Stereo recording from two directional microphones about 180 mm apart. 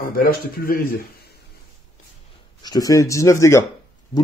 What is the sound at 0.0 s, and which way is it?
A man's voice, 55° left (ahead or behind).